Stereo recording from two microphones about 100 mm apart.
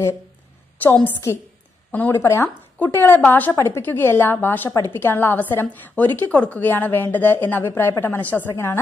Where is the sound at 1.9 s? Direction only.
20° left (ahead or behind).